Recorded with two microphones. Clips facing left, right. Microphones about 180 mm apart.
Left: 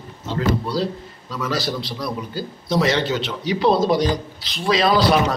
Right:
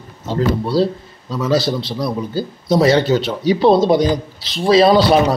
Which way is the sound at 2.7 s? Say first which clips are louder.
Right 7 dB; 40° right (ahead or behind).